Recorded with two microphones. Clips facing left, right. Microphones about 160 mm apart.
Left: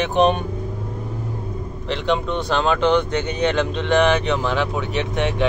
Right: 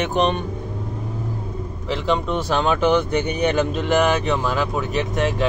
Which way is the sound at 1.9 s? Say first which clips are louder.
Even; 5° right (ahead or behind).